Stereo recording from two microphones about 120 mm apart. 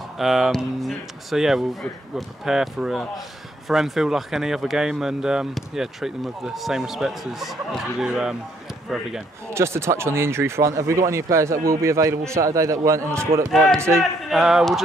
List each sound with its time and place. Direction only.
0.2 s speech: 5° right (ahead or behind)
9.5 s speech: 20° right (ahead or behind)
13.3 s speech: 50° right (ahead or behind)
13.7 s speech: 20° right (ahead or behind)
14.3 s speech: centre (ahead or behind)